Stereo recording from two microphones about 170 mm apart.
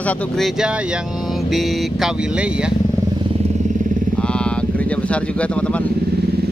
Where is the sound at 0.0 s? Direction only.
10° left (ahead or behind).